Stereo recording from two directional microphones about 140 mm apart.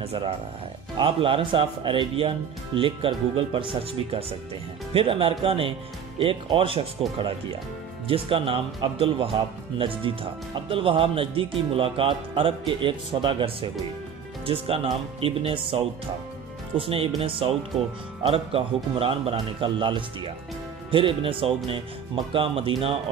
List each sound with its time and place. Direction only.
0.0 s speech: 40° right (ahead or behind)
8.1 s speech: 40° right (ahead or behind)